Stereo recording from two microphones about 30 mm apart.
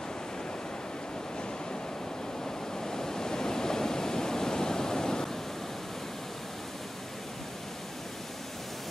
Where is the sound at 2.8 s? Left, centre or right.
Centre.